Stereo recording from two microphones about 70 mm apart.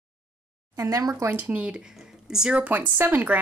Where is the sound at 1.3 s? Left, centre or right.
Right.